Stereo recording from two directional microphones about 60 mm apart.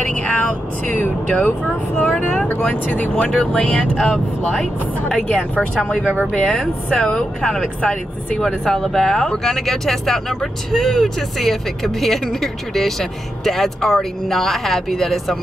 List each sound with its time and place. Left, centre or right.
0.0 s vehicle: centre
0.9 s speech: left
5.0 s speech: centre